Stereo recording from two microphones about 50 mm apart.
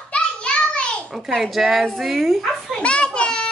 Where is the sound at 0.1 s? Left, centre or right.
Left.